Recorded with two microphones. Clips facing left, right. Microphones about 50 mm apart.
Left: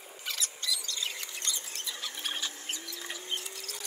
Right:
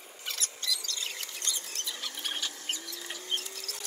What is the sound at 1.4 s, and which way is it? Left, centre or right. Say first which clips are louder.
Rodents: even; left.